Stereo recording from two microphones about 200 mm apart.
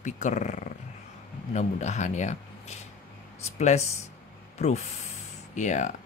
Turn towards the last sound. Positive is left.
turn(degrees=40)  # may be behind; listen again after turning